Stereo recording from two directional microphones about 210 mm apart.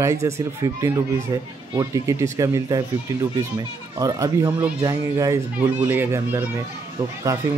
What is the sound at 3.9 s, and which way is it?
Speech, 15° right (ahead or behind).